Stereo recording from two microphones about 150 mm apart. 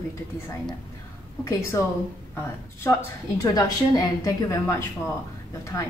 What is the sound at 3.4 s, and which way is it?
A woman's voice, 25° left (ahead or behind).